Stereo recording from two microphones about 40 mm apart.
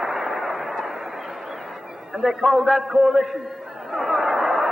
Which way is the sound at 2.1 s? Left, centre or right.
Centre.